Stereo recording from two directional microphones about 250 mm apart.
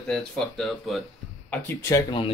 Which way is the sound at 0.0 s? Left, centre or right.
Centre.